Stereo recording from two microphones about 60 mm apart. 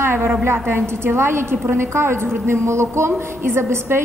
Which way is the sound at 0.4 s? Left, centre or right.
Right.